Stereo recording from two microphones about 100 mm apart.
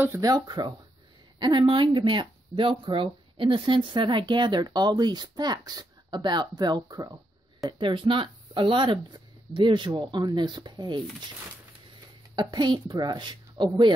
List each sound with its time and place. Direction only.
0.2 s speech: 40° right (ahead or behind)
7.8 s speech: 55° right (ahead or behind)
12.4 s speech: 45° right (ahead or behind)